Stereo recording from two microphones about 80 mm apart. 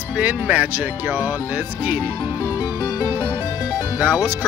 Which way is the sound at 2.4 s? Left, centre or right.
Left.